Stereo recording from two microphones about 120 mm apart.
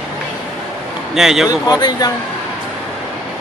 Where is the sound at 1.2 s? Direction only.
5° right (ahead or behind).